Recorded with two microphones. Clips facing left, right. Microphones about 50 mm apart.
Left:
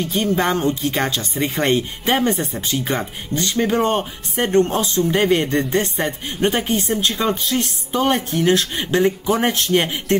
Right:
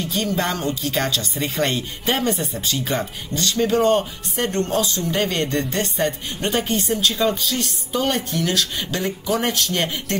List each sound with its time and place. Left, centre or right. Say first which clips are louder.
0.1 s speech: left 4 dB; left